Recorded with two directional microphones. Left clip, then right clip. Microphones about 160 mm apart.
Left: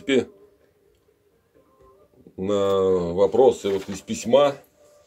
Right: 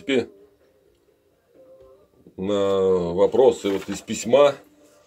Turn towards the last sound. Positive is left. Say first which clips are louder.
# right 1 dB
turn(degrees=-25)  # may be behind; listen again after turning